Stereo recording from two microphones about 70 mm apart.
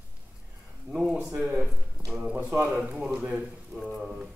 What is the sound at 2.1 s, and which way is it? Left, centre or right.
Speech, centre.